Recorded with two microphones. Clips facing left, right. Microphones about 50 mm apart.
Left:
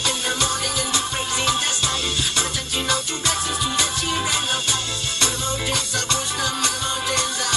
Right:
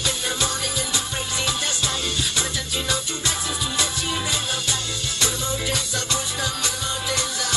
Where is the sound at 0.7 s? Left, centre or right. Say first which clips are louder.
Left 3 dB; left.